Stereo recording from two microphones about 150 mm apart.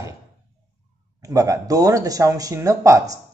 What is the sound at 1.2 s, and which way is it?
Speech, 20° right (ahead or behind).